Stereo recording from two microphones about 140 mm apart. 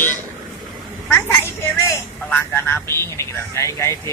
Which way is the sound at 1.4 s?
20° left (ahead or behind).